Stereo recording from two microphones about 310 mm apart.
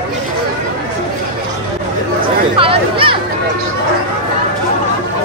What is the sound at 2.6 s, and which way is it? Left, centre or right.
Chatter, centre.